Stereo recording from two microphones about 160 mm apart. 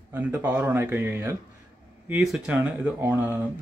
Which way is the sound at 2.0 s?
5° right (ahead or behind).